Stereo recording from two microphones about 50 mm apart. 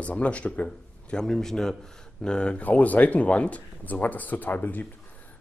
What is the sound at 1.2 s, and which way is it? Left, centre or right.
Speech, centre.